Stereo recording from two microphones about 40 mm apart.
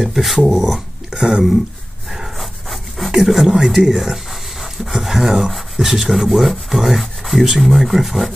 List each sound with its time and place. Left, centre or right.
0.0 s speech: centre
1.1 s speech: centre
2.0 s dog: centre
3.1 s speech: centre